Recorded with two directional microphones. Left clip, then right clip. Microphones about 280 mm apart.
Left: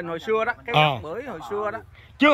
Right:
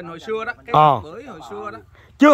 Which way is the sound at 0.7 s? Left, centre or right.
Right.